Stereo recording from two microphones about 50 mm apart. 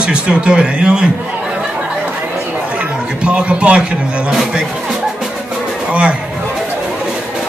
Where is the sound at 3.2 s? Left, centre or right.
Right.